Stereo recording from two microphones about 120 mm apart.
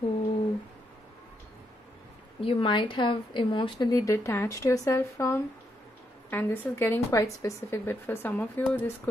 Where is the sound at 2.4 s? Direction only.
45° left (ahead or behind).